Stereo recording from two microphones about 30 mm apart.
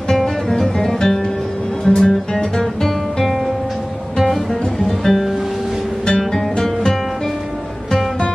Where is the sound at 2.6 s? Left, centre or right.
Centre.